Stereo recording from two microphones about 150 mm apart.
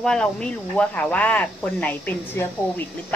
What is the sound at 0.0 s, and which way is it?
Speech, 5° left (ahead or behind).